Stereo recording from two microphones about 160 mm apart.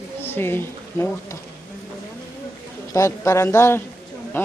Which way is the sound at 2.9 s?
20° left (ahead or behind).